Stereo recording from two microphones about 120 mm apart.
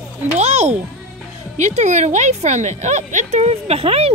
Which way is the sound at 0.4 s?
65° right (ahead or behind).